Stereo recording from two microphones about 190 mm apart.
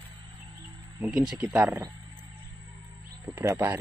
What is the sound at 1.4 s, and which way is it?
Speech, 10° right (ahead or behind).